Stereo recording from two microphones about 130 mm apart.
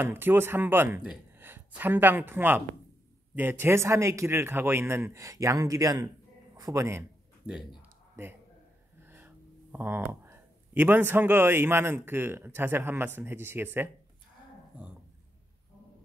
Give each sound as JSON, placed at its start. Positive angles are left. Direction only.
{"t": 0.0, "sound": "a man's voice", "side_deg": -15}
{"t": 9.0, "sound": "speech", "side_deg": -15}